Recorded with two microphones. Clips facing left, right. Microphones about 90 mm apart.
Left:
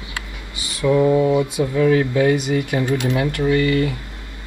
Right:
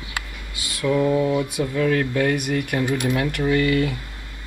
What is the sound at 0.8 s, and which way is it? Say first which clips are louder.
Speech: left 4 dB; 10° left (ahead or behind).